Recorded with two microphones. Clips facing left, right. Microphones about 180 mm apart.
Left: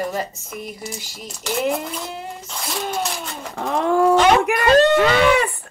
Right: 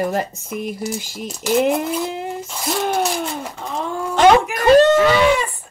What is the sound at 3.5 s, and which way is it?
Speech, 65° left (ahead or behind).